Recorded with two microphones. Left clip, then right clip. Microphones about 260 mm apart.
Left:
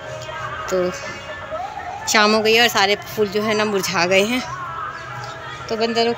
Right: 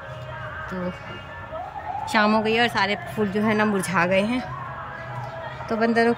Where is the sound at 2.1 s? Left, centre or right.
Centre.